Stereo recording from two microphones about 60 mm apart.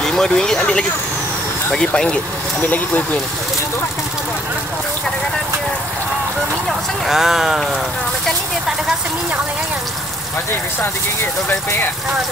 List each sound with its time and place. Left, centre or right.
0.0 s speech: centre
2.6 s speech: left
7.1 s speech: centre